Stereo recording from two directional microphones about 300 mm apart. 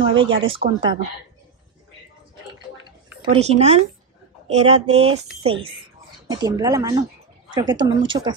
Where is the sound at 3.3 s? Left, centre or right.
Right.